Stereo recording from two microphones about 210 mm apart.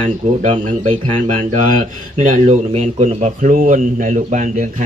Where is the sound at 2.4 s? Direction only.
30° right (ahead or behind).